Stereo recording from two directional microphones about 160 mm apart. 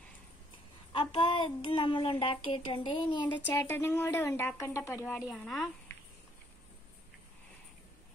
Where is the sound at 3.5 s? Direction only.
15° left (ahead or behind).